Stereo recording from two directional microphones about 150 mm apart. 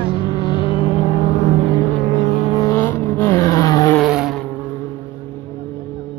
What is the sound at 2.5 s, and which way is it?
Vehicle, 20° left (ahead or behind).